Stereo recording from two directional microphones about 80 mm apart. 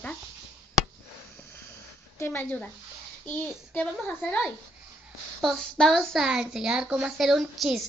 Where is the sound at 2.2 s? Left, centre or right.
Left.